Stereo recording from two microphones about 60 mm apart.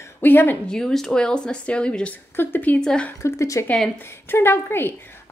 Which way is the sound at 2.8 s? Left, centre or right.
Centre.